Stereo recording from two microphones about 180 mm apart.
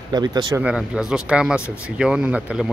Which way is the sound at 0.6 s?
5° right (ahead or behind).